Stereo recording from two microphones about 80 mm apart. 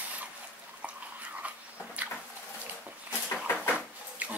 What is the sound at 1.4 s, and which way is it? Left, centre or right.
Dog, centre.